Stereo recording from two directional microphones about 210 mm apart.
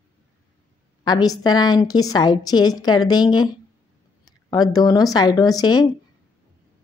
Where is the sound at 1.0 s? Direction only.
20° left (ahead or behind).